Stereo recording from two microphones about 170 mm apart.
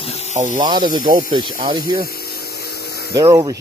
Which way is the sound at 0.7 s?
25° right (ahead or behind).